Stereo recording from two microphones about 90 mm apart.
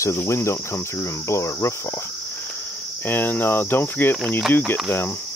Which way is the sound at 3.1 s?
20° left (ahead or behind).